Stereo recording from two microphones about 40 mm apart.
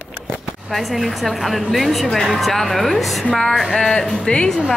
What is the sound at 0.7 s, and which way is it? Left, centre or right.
A woman's voice, centre.